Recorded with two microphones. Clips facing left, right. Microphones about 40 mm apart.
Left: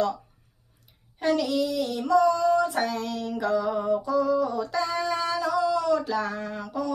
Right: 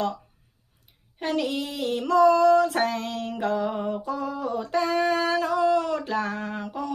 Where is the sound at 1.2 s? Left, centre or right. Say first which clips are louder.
Left 3 dB; right.